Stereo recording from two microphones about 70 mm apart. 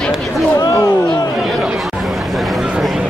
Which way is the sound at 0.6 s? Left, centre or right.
Left.